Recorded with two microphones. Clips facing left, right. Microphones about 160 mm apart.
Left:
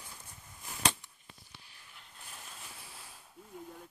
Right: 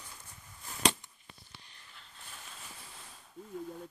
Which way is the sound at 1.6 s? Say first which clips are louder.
Even; 10° left (ahead or behind).